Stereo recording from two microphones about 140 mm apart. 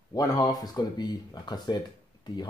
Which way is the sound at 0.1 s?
30° left (ahead or behind).